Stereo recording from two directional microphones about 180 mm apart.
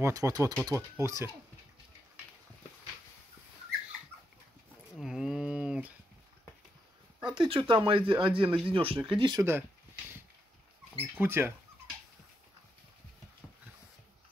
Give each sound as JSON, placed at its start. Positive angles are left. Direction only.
{"t": 0.0, "sound": "speech", "side_deg": -20}
{"t": 4.9, "sound": "a sound", "side_deg": 0}
{"t": 7.2, "sound": "speech", "side_deg": -25}
{"t": 11.1, "sound": "speech", "side_deg": -15}